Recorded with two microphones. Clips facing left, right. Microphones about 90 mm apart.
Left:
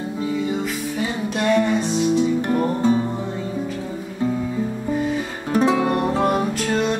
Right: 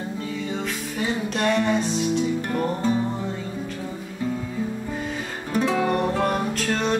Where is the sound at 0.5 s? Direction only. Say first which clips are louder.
Left 5 dB; 5° left (ahead or behind).